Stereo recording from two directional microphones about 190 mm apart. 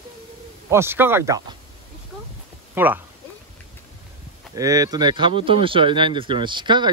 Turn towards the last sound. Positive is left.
turn(degrees=-25)  # may be behind; listen again after turning